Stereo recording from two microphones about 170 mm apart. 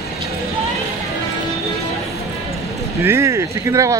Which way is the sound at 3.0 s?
15° right (ahead or behind).